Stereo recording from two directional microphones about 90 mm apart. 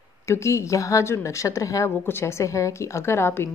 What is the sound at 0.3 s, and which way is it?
Speech, 35° left (ahead or behind).